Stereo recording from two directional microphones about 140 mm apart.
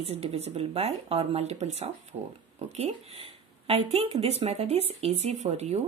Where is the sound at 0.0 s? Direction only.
45° right (ahead or behind).